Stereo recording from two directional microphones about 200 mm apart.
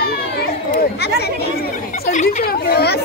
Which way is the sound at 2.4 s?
50° left (ahead or behind).